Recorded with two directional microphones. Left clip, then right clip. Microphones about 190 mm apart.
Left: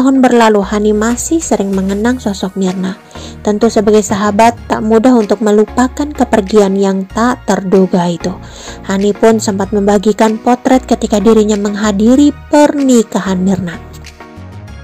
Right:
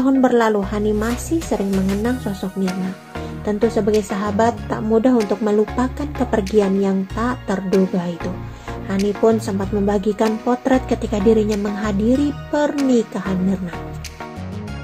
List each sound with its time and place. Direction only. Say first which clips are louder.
0.0 s a woman's voice: left 7 dB; 40° left (ahead or behind)
8.8 s a woman's voice: left 8 dB; 40° left (ahead or behind)